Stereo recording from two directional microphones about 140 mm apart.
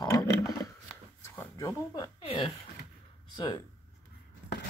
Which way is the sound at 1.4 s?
25° left (ahead or behind).